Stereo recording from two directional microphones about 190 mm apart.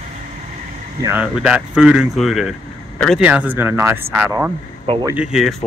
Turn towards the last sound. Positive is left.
turn(degrees=0)  # may be behind; listen again after turning